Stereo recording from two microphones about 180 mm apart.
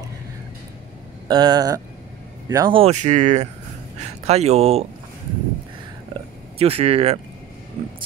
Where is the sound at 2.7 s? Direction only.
35° right (ahead or behind).